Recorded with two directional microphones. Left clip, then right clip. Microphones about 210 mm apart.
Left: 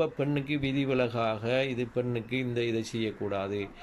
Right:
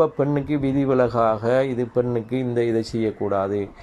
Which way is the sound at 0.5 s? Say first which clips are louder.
Right 8 dB; 35° right (ahead or behind).